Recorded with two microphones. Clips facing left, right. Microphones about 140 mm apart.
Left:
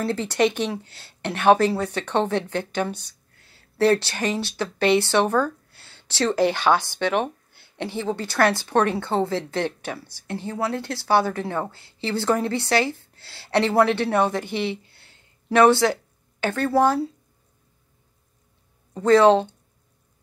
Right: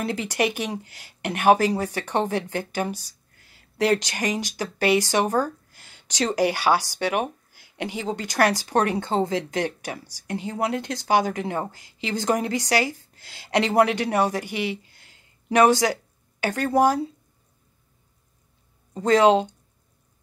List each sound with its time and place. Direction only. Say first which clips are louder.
0.0 s a woman's voice: left 3 dB; 15° right (ahead or behind)
18.9 s a woman's voice: left 2 dB; 15° right (ahead or behind)